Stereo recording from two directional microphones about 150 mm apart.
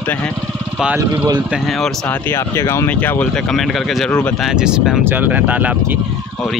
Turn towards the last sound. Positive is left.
turn(degrees=-10)  # may be behind; listen again after turning